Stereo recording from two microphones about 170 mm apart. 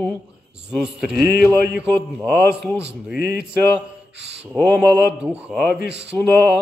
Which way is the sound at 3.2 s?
65° left (ahead or behind).